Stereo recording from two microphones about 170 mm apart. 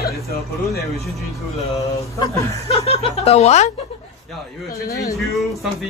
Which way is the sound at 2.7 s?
35° left (ahead or behind).